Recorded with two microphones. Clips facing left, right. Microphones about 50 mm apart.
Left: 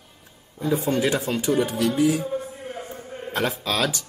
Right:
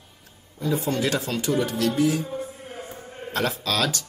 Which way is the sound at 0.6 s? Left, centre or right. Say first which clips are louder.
Left 2 dB; left.